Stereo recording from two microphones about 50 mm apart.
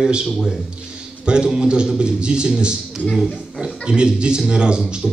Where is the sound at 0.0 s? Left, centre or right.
Centre.